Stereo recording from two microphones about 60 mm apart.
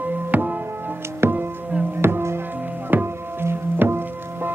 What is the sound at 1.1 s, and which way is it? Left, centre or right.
Music, right.